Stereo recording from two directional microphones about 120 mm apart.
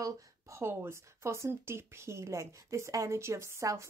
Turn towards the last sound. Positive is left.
turn(degrees=-25)  # may be behind; listen again after turning